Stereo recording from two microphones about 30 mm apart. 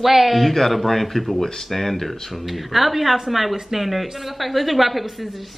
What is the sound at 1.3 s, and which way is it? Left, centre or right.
A woman's voice, centre.